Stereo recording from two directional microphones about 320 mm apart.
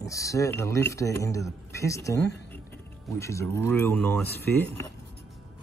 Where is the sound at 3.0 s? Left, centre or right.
Centre.